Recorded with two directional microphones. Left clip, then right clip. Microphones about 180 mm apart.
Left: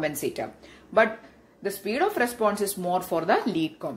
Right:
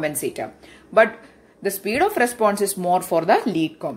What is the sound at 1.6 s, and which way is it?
Speech, 30° right (ahead or behind).